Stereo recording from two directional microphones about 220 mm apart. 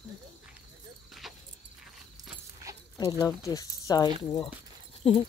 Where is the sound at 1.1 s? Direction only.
Centre (ahead or behind).